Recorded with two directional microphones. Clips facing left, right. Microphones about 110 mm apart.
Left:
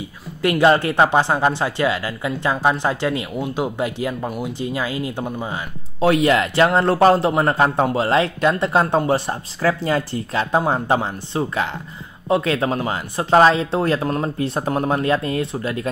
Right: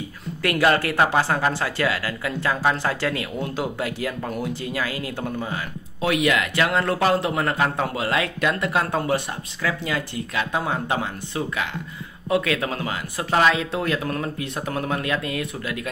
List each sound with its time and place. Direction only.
0.4 s speech: 25° left (ahead or behind)
6.0 s a man's voice: 35° left (ahead or behind)